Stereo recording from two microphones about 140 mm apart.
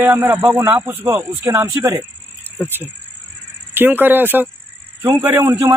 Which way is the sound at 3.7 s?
15° right (ahead or behind).